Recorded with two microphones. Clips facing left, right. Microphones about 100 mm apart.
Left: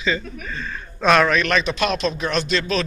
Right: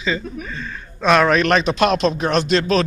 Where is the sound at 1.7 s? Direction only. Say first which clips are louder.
Right 5 dB; 60° right (ahead or behind).